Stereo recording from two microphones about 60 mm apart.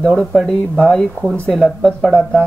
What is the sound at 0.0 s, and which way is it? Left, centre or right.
Speech, centre.